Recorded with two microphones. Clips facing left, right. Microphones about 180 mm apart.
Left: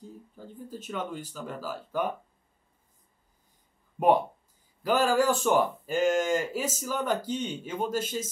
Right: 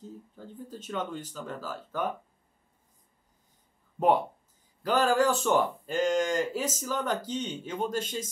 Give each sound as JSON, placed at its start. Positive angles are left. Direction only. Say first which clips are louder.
{"t": 0.7, "sound": "speech", "louder": "even", "side_deg": 10}
{"t": 4.8, "sound": "speech", "louder": "left 1 dB", "side_deg": 10}